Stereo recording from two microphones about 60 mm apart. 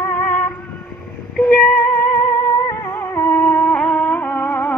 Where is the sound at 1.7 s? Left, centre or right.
Left.